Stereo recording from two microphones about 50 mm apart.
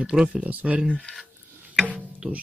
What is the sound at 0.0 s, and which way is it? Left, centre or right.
Speech, centre.